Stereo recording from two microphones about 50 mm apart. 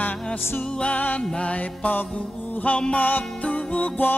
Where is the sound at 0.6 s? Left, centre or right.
Centre.